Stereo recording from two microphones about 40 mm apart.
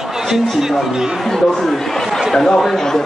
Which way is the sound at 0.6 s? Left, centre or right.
Centre.